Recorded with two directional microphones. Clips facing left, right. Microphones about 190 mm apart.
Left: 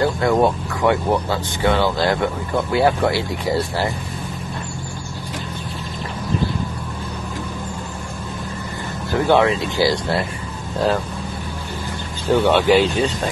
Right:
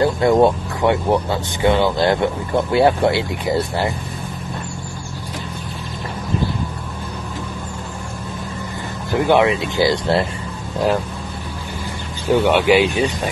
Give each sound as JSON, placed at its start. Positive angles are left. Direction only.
{"t": 0.0, "sound": "speech", "side_deg": -25}
{"t": 9.1, "sound": "speech", "side_deg": -15}
{"t": 12.3, "sound": "speech", "side_deg": -15}